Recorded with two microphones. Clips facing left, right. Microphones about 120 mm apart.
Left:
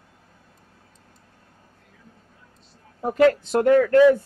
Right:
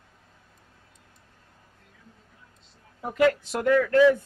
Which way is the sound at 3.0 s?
35° left (ahead or behind).